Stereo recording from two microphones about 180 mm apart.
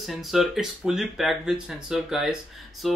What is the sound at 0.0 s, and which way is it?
Speech, centre (ahead or behind).